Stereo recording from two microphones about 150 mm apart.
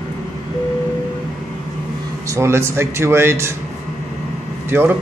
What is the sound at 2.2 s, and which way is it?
Speech, 20° right (ahead or behind).